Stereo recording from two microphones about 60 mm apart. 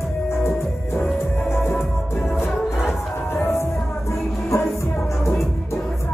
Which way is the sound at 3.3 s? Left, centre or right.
Left.